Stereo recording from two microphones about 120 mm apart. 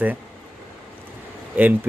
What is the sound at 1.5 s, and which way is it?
Speech, 15° right (ahead or behind).